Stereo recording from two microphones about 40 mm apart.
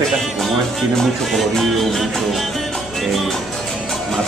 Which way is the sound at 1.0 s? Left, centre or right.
Centre.